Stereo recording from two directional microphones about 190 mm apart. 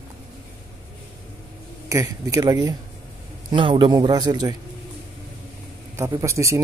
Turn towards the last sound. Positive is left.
turn(degrees=-15)  # may be behind; listen again after turning